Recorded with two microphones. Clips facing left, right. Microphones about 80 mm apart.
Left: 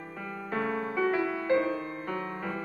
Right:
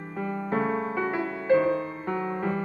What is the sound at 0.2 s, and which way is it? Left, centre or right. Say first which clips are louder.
Music: right 6 dB; right.